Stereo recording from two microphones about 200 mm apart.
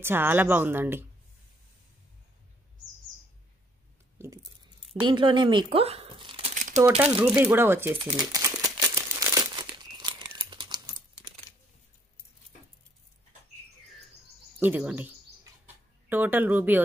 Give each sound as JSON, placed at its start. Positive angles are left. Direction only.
{"t": 0.0, "sound": "speech", "side_deg": -10}
{"t": 4.4, "sound": "squish", "side_deg": 0}
{"t": 5.0, "sound": "speech", "side_deg": -25}
{"t": 6.5, "sound": "crumpling", "side_deg": -40}
{"t": 7.3, "sound": "speech", "side_deg": -10}
{"t": 8.0, "sound": "crumpling", "side_deg": -20}
{"t": 14.6, "sound": "speech", "side_deg": -10}